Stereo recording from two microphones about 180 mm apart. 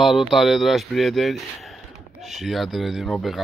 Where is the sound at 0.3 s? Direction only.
Centre (ahead or behind).